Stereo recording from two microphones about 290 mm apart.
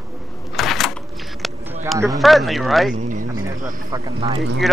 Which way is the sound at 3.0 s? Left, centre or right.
Right.